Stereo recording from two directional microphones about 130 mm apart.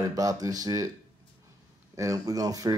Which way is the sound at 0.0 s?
25° right (ahead or behind).